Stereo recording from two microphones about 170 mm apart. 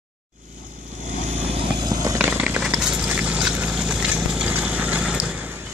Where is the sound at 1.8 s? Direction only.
25° right (ahead or behind).